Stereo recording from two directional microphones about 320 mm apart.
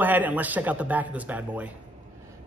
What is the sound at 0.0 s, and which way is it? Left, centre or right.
A man's voice, centre.